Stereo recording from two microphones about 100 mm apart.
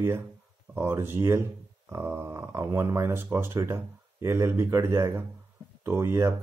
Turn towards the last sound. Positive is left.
turn(degrees=-30)  # may be behind; listen again after turning